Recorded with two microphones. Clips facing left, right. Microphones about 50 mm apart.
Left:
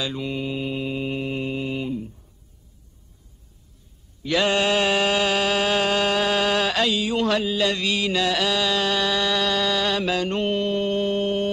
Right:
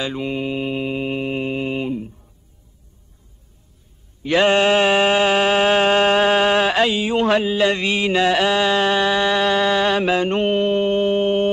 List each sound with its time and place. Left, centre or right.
0.0 s mantra: right
4.2 s mantra: right